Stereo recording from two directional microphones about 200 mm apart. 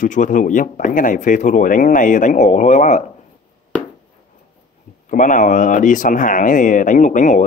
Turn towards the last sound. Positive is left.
turn(degrees=40)  # may be behind; listen again after turning